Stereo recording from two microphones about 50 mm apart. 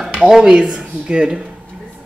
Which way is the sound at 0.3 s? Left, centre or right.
Centre.